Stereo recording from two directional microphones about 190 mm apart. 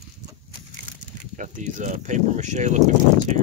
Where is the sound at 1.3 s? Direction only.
40° right (ahead or behind).